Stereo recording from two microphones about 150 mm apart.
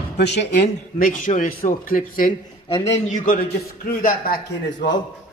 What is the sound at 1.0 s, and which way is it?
A man's voice, 60° left (ahead or behind).